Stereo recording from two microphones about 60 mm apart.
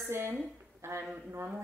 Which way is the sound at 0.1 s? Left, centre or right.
Right.